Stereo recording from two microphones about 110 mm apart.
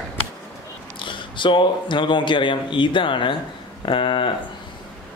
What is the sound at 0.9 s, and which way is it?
A man's voice, 50° left (ahead or behind).